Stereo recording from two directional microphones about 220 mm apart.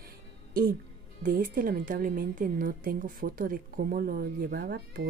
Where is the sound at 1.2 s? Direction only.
40° right (ahead or behind).